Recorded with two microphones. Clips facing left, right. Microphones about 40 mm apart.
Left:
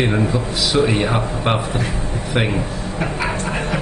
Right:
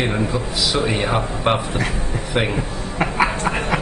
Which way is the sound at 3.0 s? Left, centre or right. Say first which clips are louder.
Right 4 dB; right.